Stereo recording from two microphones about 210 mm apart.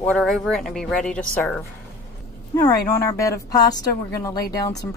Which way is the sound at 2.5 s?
20° left (ahead or behind).